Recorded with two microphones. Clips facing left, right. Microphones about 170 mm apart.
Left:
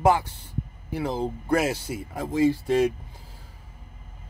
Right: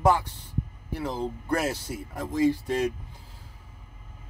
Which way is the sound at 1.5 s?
5° left (ahead or behind).